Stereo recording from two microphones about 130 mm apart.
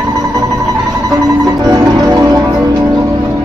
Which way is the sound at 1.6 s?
30° right (ahead or behind).